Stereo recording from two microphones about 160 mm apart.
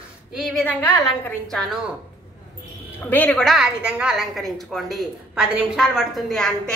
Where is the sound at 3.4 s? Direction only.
Centre (ahead or behind).